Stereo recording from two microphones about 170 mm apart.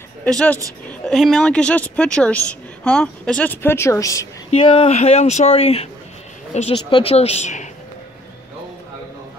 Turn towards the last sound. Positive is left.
turn(degrees=45)  # may be behind; listen again after turning